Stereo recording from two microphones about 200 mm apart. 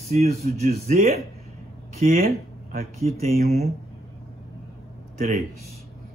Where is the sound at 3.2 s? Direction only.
40° right (ahead or behind).